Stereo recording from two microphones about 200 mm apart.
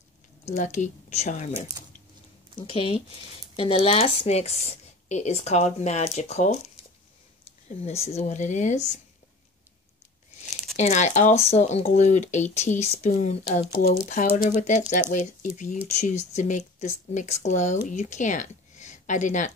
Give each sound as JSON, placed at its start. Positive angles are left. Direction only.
{"t": 0.5, "sound": "speech", "side_deg": 35}
{"t": 7.8, "sound": "speech", "side_deg": 30}
{"t": 10.8, "sound": "speech", "side_deg": 35}